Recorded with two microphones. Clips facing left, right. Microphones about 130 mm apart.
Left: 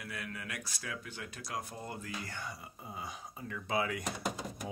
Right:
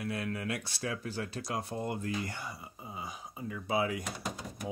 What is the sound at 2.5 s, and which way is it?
Speech, 5° right (ahead or behind).